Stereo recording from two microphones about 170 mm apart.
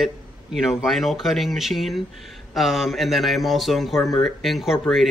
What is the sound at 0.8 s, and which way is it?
A man's voice, centre (ahead or behind).